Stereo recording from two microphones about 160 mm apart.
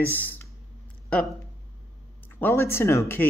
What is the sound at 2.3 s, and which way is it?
Speech, 15° left (ahead or behind).